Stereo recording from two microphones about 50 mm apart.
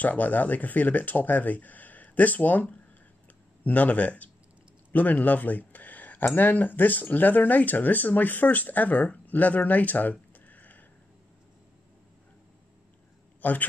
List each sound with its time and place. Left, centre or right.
0.0 s speech: left
4.9 s a sound: left
6.2 s speech: left
13.4 s speech: left